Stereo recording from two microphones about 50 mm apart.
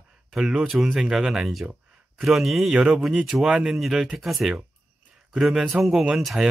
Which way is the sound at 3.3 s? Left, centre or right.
Right.